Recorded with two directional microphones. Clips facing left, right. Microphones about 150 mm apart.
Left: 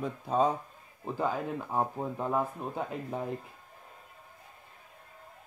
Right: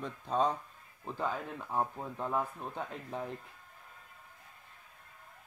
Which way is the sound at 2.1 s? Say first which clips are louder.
Left 3 dB; 10° left (ahead or behind).